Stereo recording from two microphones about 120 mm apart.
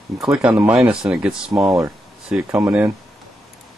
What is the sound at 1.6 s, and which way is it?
Speech, 25° right (ahead or behind).